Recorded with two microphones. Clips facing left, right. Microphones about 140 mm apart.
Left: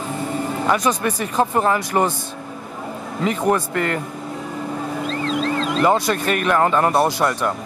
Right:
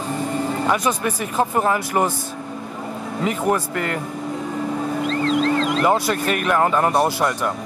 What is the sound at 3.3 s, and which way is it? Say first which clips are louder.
Speech: left 2 dB; 15° right (ahead or behind).